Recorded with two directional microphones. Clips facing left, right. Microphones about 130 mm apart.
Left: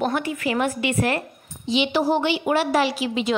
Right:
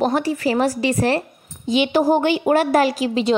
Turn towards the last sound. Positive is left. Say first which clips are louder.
# right 4 dB
turn(degrees=-35)  # may be behind; listen again after turning